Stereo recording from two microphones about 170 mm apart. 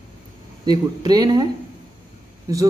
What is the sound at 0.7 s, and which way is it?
A man's voice, 25° right (ahead or behind).